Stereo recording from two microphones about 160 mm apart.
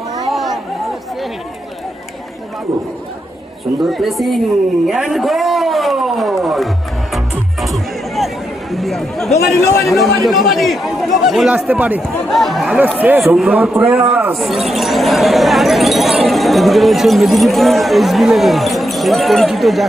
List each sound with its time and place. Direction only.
0.3 s chatter: centre (ahead or behind)
3.8 s speech: centre (ahead or behind)
4.8 s a sound: centre (ahead or behind)
7.6 s music: centre (ahead or behind)
8.7 s speech: centre (ahead or behind)
9.6 s a man's voice: 20° left (ahead or behind)
9.8 s a man's voice: centre (ahead or behind)
12.1 s a man's voice: centre (ahead or behind)